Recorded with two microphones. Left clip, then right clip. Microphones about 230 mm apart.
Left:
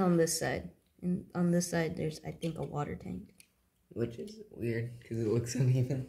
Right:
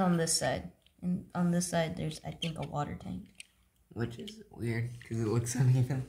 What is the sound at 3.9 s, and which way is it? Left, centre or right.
Speech, centre.